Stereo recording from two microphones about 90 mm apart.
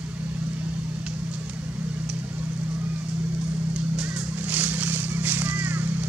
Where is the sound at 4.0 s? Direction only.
20° right (ahead or behind).